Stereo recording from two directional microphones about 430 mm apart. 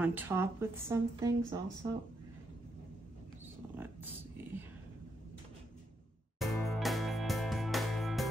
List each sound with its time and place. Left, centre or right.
0.0 s speech: centre
3.7 s a sound: centre
6.4 s music: centre